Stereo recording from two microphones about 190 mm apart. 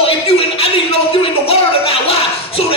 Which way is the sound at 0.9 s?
30° left (ahead or behind).